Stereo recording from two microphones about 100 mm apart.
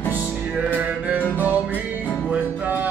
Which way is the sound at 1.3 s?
15° right (ahead or behind).